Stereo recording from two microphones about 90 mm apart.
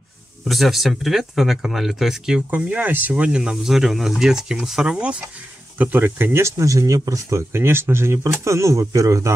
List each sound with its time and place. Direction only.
0.5 s speech: centre (ahead or behind)
2.5 s speech: 20° right (ahead or behind); by 9.3 s 35° right (ahead or behind)